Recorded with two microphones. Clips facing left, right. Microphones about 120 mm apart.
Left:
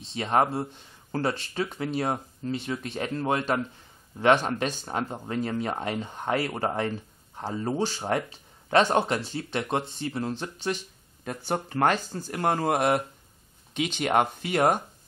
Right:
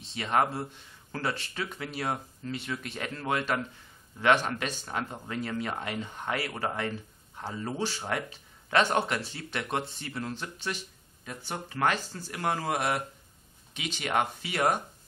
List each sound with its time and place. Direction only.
0.1 s speech: 30° left (ahead or behind)
11.2 s speech: 45° left (ahead or behind)